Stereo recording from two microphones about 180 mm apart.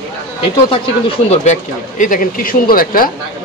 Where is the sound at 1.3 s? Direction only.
40° left (ahead or behind).